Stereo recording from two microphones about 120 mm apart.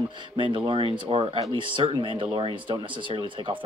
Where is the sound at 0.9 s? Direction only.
45° right (ahead or behind).